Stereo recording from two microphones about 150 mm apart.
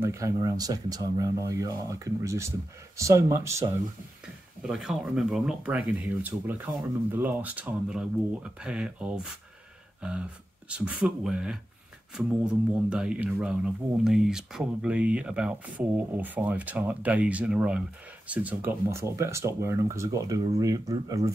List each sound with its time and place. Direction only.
0.0 s speech: 20° right (ahead or behind)
4.6 s speech: 5° right (ahead or behind)
10.7 s speech: 5° right (ahead or behind); by 21.3 s 25° right (ahead or behind)